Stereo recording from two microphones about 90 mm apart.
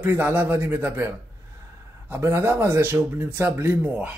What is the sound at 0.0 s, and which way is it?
Speech, 20° right (ahead or behind).